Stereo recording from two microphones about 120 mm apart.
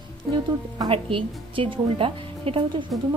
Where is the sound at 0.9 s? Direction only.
50° right (ahead or behind).